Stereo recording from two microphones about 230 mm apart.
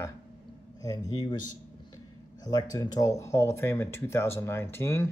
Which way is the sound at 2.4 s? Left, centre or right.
Centre.